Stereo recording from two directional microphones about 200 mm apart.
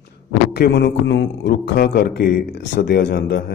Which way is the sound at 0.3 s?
55° left (ahead or behind).